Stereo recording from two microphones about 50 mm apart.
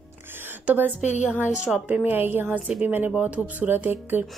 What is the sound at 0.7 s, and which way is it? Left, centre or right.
Speech, right.